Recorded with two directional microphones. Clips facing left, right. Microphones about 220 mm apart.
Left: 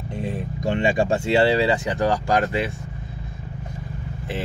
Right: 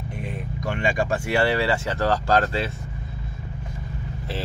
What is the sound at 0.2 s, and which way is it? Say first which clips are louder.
Speech: left 5 dB; 25° left (ahead or behind).